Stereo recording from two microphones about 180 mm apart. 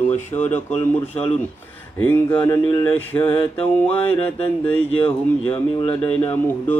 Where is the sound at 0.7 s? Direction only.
35° left (ahead or behind).